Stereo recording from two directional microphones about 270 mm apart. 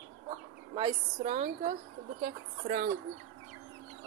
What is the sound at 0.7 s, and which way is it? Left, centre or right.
Speech, centre.